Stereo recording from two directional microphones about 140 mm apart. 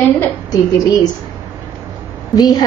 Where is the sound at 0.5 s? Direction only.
30° left (ahead or behind).